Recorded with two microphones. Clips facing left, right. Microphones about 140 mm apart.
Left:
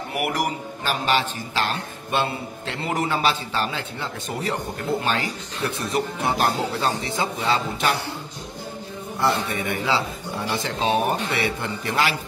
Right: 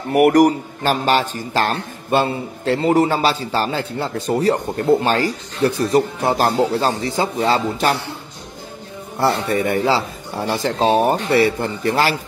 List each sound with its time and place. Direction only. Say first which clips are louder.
0.1 s a man's voice: right 14 dB; 45° right (ahead or behind)
9.2 s a man's voice: right 6 dB; 45° right (ahead or behind)